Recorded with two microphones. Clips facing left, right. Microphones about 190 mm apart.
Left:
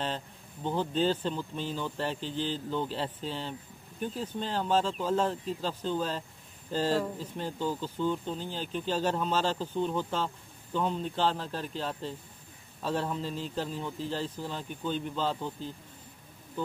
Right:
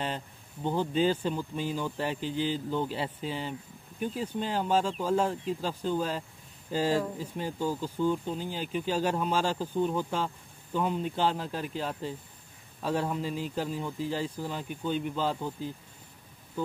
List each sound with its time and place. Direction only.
0.7 s speech: 10° right (ahead or behind)